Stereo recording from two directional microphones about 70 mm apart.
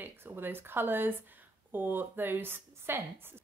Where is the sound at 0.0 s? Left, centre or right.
Right.